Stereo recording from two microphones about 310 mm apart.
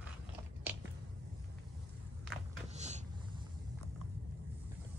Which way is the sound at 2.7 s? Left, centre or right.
Right.